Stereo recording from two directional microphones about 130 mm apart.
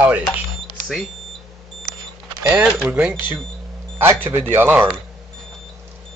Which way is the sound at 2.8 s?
10° right (ahead or behind).